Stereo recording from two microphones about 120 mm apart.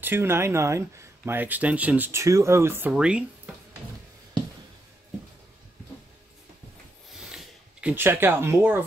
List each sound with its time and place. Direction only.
0.0 s speech: 20° right (ahead or behind)
2.2 s speech: 25° right (ahead or behind)
2.9 s speech: 10° right (ahead or behind)
7.1 s a sound: 5° right (ahead or behind)
7.9 s speech: 20° right (ahead or behind)